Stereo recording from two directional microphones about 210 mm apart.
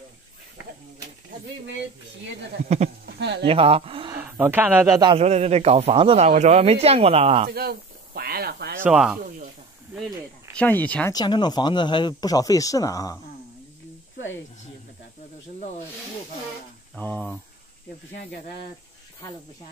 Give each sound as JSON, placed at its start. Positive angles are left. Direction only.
{"t": 3.1, "sound": "speech", "side_deg": -55}
{"t": 3.4, "sound": "speech", "side_deg": -25}
{"t": 4.1, "sound": "speech", "side_deg": -10}
{"t": 5.1, "sound": "speech", "side_deg": -30}
{"t": 7.4, "sound": "a sound", "side_deg": -45}
{"t": 8.8, "sound": "speech", "side_deg": -5}
{"t": 10.5, "sound": "speech", "side_deg": 5}
{"t": 11.1, "sound": "speech", "side_deg": 20}
{"t": 14.1, "sound": "snake", "side_deg": 65}
{"t": 16.9, "sound": "speech", "side_deg": 5}